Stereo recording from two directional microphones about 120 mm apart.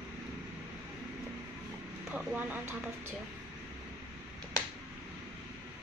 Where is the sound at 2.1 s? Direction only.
15° right (ahead or behind).